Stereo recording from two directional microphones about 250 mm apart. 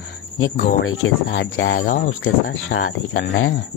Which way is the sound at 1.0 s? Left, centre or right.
Left.